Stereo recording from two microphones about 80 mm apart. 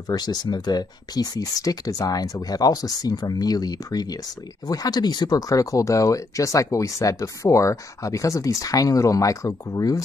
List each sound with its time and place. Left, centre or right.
0.1 s speech: left